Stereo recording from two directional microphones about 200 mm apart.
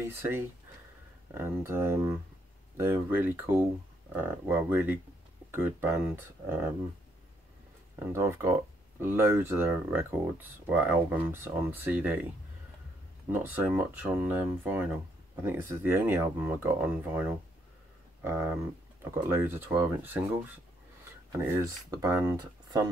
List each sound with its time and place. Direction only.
0.0 s speech: 10° right (ahead or behind)
8.0 s speech: 10° right (ahead or behind)
13.3 s speech: 10° right (ahead or behind)
21.5 s speech: 15° right (ahead or behind)